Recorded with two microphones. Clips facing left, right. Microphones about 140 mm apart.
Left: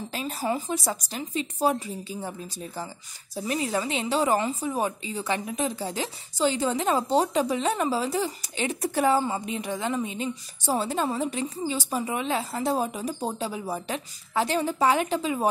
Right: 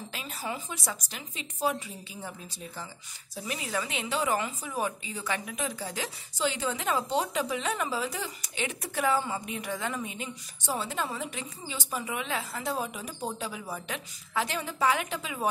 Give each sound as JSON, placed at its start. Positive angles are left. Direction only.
{"t": 0.1, "sound": "speech", "side_deg": 35}